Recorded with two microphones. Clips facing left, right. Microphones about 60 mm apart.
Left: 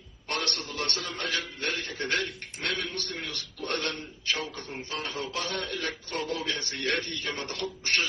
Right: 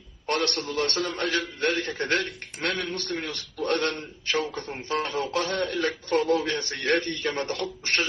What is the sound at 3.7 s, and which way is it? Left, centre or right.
A man's voice, right.